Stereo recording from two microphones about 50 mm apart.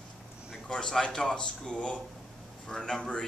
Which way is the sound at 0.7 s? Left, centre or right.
Centre.